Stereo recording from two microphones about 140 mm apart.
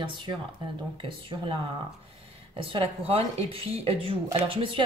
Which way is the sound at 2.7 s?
40° right (ahead or behind).